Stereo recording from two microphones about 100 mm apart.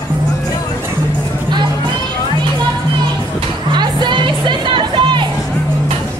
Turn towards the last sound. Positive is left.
turn(degrees=-55)  # may be behind; listen again after turning